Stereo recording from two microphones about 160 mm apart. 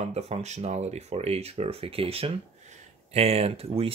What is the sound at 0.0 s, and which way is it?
Speech, 45° right (ahead or behind).